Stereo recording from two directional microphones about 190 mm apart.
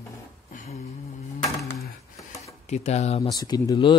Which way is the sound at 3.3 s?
20° left (ahead or behind).